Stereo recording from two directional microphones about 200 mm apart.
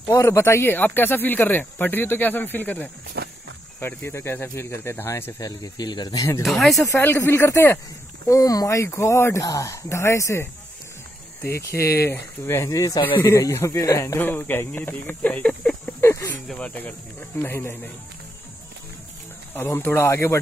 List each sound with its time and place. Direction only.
0.1 s speech: 15° left (ahead or behind)
3.2 s walk: 55° right (ahead or behind)
3.8 s speech: 10° left (ahead or behind)
6.4 s speech: centre (ahead or behind)
6.9 s speech: 10° left (ahead or behind)
11.7 s speech: 15° left (ahead or behind)
19.5 s speech: 10° left (ahead or behind)